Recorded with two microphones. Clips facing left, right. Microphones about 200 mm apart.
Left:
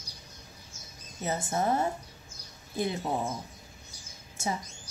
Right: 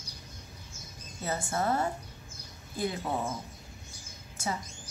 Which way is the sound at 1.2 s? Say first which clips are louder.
Left 2 dB; 20° left (ahead or behind).